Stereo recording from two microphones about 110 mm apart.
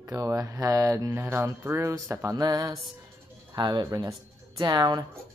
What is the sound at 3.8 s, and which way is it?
Speech, 30° right (ahead or behind).